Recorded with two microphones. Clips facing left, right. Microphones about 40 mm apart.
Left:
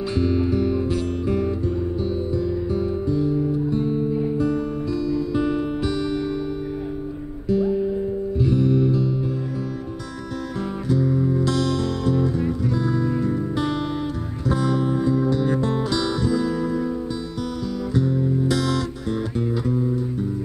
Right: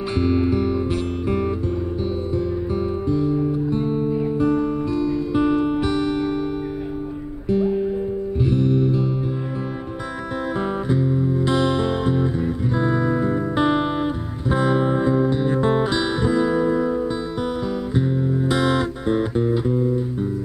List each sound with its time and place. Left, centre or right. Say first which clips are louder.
0.2 s music: right 2 dB; centre
3.1 s music: right 2 dB; centre
3.7 s music: right 1 dB; right
7.4 s music: right 1 dB; right
10.9 s music: left 3 dB; right
17.9 s music: left 1 dB; right